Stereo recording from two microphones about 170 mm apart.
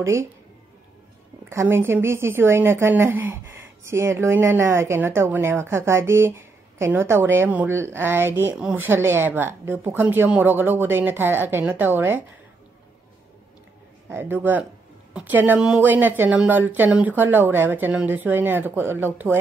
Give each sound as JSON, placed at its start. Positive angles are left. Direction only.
{"t": 0.0, "sound": "a woman's voice", "side_deg": -15}
{"t": 1.5, "sound": "a woman's voice", "side_deg": -15}
{"t": 14.0, "sound": "a woman's voice", "side_deg": -10}